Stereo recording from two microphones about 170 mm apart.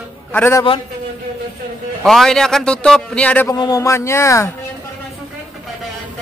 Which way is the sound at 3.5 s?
20° left (ahead or behind).